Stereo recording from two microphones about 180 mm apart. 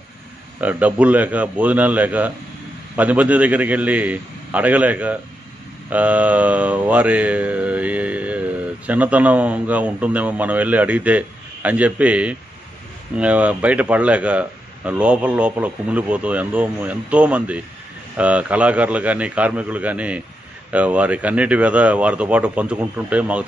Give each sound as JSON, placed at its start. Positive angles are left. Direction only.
{"t": 0.6, "sound": "speech", "side_deg": -10}
{"t": 5.9, "sound": "mantra", "side_deg": -10}
{"t": 13.1, "sound": "speech", "side_deg": -5}